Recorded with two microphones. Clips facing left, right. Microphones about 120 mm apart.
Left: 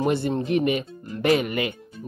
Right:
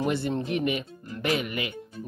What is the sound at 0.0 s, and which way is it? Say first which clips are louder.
Speech: left 4 dB; 35° left (ahead or behind).